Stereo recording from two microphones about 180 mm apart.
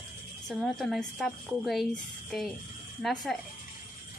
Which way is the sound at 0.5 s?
Centre (ahead or behind).